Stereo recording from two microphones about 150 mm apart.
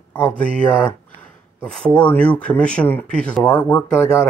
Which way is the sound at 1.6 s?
5° left (ahead or behind).